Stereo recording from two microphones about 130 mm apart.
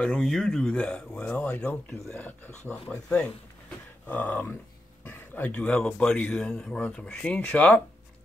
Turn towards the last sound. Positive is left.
turn(degrees=10)  # may be behind; listen again after turning